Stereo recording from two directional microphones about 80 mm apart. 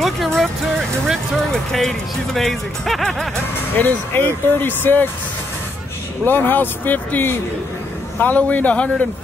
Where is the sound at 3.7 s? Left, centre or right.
Left.